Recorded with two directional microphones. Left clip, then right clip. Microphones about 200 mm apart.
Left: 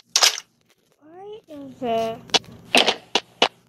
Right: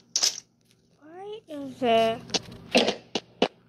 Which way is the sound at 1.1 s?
Centre (ahead or behind).